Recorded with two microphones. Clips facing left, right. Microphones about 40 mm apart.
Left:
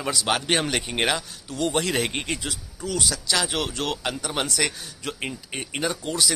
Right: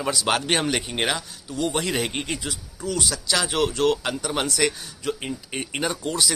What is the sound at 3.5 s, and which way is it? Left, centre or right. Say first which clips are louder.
Speech: right 5 dB; right.